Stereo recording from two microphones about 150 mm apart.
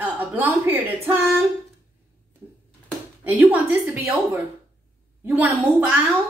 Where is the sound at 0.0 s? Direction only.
10° right (ahead or behind).